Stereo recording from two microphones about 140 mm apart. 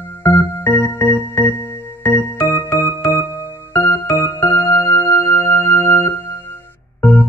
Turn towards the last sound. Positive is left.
turn(degrees=15)  # may be behind; listen again after turning